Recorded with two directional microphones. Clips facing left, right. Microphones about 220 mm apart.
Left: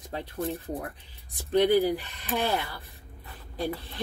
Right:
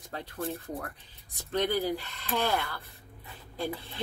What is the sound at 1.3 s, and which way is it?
Speech, 15° left (ahead or behind).